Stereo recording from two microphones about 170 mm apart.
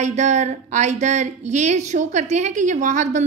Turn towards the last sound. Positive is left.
turn(degrees=-45)  # may be behind; listen again after turning